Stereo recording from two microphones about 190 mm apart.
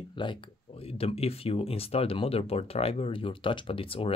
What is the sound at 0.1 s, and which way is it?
Speech, 25° left (ahead or behind).